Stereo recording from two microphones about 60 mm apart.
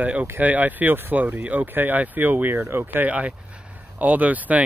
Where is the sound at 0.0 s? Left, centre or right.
Right.